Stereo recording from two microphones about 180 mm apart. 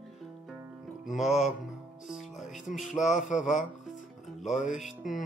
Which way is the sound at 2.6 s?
45° left (ahead or behind).